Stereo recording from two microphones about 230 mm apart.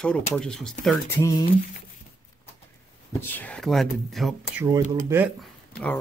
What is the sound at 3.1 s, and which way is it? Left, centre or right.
Speech, centre.